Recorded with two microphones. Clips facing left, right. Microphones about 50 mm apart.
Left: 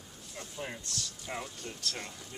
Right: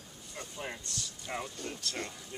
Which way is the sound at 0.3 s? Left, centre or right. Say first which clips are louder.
Even; centre.